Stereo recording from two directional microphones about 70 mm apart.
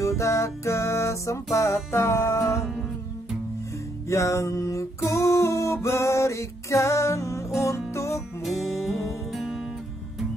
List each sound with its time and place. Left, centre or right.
0.0 s music: left
4.1 s music: left
8.5 s music: centre